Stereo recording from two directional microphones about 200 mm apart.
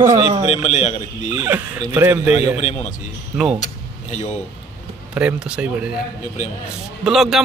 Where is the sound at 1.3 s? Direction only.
15° right (ahead or behind).